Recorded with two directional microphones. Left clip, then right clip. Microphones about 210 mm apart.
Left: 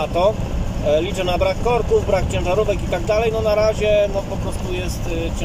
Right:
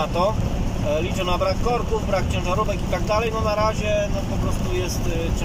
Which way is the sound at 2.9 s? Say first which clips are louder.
Left 4 dB; 15° left (ahead or behind).